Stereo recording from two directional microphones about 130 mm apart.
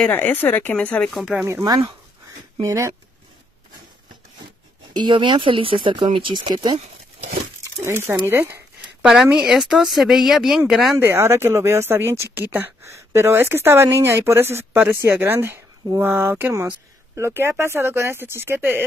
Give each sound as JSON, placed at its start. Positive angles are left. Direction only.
{"t": 0.0, "sound": "speech", "side_deg": 15}
{"t": 2.6, "sound": "speech", "side_deg": -25}
{"t": 4.9, "sound": "speech", "side_deg": -35}
{"t": 7.8, "sound": "speech", "side_deg": -20}
{"t": 9.0, "sound": "speech", "side_deg": -5}
{"t": 11.0, "sound": "speech", "side_deg": -20}